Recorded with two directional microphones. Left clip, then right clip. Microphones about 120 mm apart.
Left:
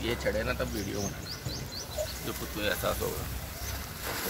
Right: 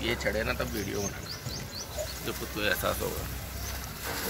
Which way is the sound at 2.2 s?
25° left (ahead or behind).